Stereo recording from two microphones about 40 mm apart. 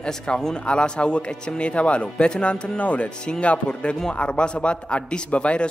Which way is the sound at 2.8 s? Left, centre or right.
Left.